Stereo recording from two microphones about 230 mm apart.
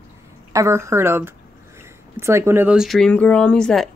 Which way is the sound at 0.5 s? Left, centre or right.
Centre.